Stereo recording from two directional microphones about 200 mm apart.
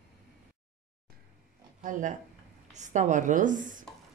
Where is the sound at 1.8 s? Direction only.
40° right (ahead or behind).